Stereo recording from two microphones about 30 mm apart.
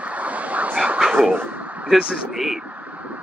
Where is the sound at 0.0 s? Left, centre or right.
Right.